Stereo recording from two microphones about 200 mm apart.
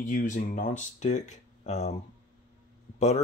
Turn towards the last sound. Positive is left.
turn(degrees=35)  # may be behind; listen again after turning